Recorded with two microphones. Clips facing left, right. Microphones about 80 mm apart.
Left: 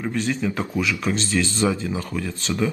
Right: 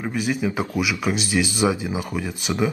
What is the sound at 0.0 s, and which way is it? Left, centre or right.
Speech, centre.